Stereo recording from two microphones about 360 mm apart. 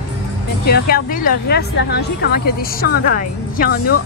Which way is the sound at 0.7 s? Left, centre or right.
Left.